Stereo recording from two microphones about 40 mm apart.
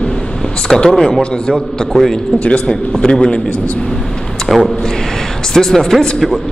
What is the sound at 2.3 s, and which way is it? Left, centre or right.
A man's voice, left.